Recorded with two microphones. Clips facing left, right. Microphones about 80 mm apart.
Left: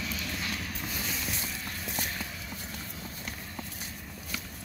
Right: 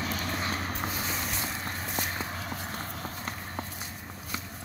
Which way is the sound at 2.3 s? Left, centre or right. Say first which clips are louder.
Right 5 dB; right.